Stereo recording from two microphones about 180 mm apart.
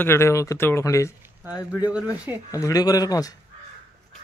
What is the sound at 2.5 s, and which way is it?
Speech, 20° left (ahead or behind).